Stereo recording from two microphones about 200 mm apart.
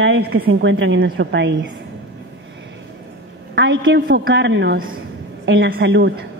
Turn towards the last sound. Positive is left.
turn(degrees=-60)  # may be behind; listen again after turning